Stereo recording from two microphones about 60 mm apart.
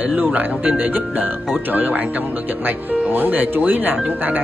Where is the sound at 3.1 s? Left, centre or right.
Right.